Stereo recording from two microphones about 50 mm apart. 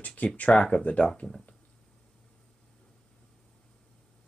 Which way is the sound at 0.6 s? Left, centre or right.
Centre.